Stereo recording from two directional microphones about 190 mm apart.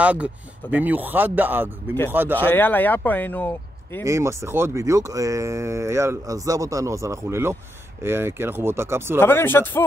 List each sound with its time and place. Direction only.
0.0 s speech: 5° right (ahead or behind)
2.4 s speech: 10° left (ahead or behind)
4.0 s speech: 15° right (ahead or behind)
9.2 s speech: 10° left (ahead or behind)